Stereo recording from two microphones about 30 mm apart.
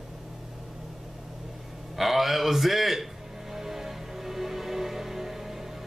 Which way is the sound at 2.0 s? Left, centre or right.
Centre.